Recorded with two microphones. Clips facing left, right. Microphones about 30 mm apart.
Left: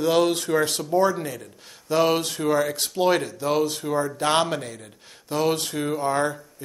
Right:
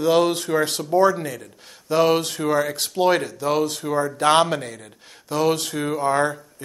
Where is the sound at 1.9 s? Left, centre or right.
Right.